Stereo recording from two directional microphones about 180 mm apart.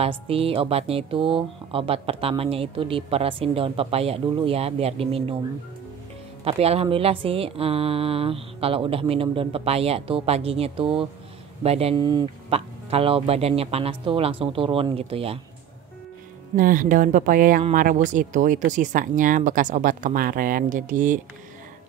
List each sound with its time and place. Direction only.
0.0 s a woman's voice: 30° right (ahead or behind)
6.4 s a woman's voice: 35° right (ahead or behind)
16.5 s speech: 50° right (ahead or behind)